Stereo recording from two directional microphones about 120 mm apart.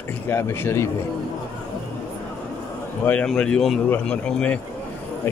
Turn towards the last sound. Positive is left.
turn(degrees=10)  # may be behind; listen again after turning